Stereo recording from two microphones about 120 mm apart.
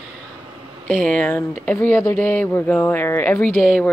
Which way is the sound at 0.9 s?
10° left (ahead or behind).